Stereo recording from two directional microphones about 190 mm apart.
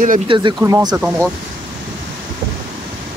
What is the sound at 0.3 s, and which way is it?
Speech, 25° right (ahead or behind).